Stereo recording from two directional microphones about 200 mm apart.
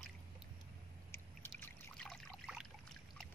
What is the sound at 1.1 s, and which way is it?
Trickle, 5° left (ahead or behind).